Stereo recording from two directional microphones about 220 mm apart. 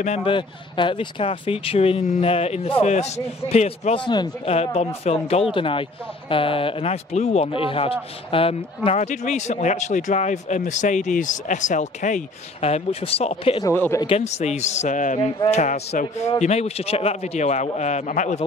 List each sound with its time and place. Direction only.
0.0 s speech: 25° left (ahead or behind)
13.7 s speech: 10° left (ahead or behind)
14.0 s speech: 30° left (ahead or behind)